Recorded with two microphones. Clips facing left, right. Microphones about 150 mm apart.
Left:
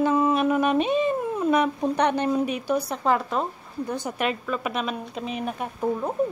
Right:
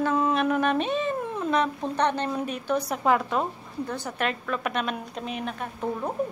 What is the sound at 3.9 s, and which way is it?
A woman's voice, 10° left (ahead or behind).